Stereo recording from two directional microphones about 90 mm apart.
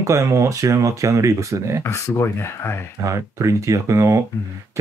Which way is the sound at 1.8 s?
30° left (ahead or behind).